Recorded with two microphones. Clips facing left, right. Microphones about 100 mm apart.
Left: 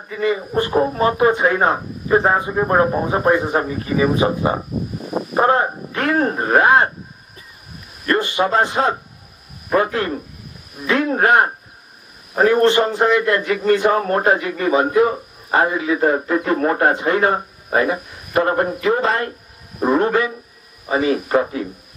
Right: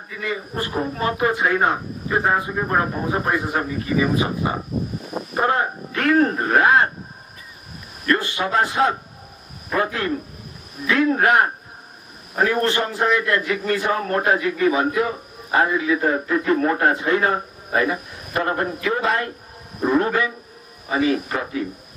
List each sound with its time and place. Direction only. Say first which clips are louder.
0.2 s a man's voice: left 8 dB; 30° left (ahead or behind)
8.1 s a man's voice: left 3 dB; 30° left (ahead or behind)
10.9 s a man's voice: left 2 dB; 30° left (ahead or behind)